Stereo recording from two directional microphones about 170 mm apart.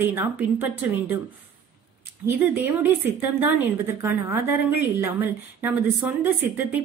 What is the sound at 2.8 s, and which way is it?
A woman's voice, 10° right (ahead or behind).